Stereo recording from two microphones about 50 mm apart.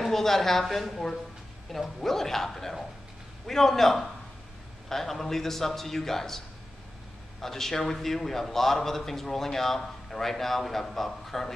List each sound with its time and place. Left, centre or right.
0.0 s a man's voice: centre
7.4 s a man's voice: centre